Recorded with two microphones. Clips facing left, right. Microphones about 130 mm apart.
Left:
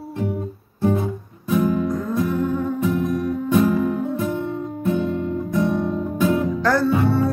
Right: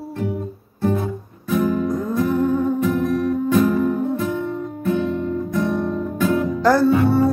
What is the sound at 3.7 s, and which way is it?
Music, 15° left (ahead or behind).